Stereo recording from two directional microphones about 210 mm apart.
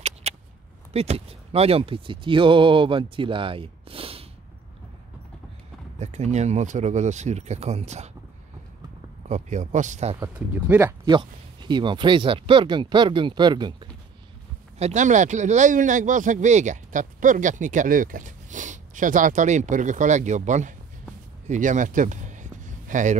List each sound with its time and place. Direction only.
0.2 s a sound: 30° right (ahead or behind)
0.9 s speech: 30° right (ahead or behind)
5.9 s speech: 35° right (ahead or behind)
9.3 s speech: 35° right (ahead or behind)
10.2 s speech: 10° right (ahead or behind)
14.8 s speech: 35° right (ahead or behind)
21.5 s a sound: 35° right (ahead or behind)